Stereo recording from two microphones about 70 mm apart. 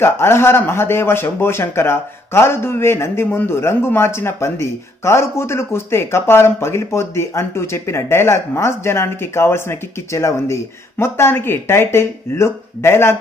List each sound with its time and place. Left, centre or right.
0.0 s a man's voice: left